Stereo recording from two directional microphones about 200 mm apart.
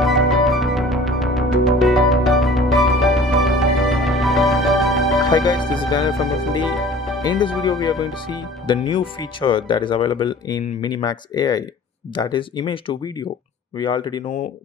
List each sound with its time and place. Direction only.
0.0 s music: centre (ahead or behind)
5.2 s speech: 20° left (ahead or behind)
6.7 s music: centre (ahead or behind)
7.2 s speech: 20° left (ahead or behind)